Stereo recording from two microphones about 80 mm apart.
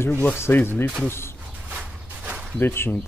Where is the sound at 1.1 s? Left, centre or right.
Left.